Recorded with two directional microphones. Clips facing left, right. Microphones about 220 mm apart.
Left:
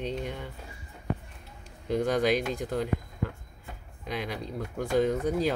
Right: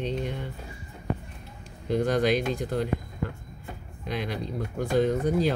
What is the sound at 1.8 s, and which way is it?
Speech, 10° left (ahead or behind).